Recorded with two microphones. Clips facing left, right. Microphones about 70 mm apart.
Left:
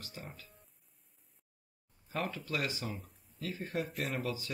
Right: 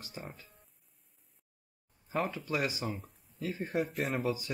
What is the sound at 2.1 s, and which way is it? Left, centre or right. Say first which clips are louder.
Speech: right 4 dB; centre.